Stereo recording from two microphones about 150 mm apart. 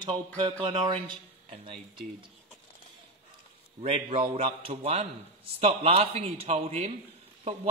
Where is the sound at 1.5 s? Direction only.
40° right (ahead or behind).